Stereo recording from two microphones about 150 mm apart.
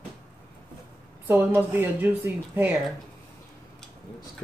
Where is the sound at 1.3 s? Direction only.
15° right (ahead or behind).